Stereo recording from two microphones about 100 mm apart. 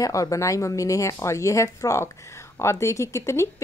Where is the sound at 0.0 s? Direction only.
35° left (ahead or behind).